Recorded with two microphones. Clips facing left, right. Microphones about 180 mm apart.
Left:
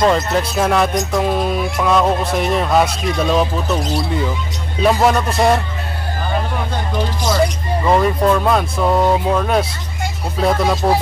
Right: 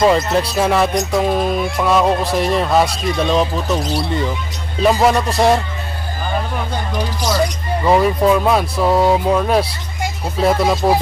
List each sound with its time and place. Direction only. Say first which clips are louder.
0.0 s speech: right 1 dB; centre (ahead or behind)
7.8 s speech: right 1 dB; 5° right (ahead or behind)